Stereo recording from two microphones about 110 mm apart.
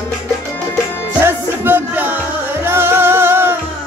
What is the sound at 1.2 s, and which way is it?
Music, 20° right (ahead or behind).